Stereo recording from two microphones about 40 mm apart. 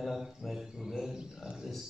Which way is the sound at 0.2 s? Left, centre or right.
Centre.